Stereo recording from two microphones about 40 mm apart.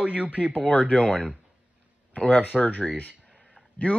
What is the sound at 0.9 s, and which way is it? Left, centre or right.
Speech, left.